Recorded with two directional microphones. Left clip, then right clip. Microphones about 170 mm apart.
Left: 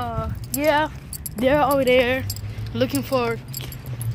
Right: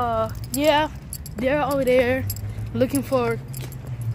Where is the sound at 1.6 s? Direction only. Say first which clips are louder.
Left 3 dB; 25° left (ahead or behind).